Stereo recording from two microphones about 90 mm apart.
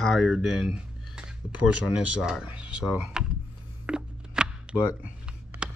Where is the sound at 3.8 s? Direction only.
10° right (ahead or behind).